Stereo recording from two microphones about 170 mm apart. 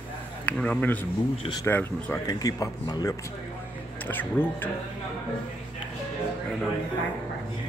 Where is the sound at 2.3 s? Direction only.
20° left (ahead or behind).